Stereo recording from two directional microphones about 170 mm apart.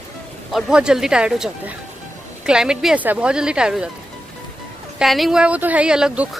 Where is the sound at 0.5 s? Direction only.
Centre (ahead or behind).